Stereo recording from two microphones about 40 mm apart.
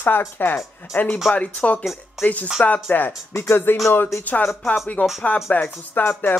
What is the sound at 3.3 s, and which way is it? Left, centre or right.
Speech, left.